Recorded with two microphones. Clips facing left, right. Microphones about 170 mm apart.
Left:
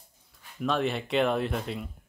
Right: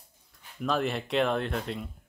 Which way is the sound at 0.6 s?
Centre (ahead or behind).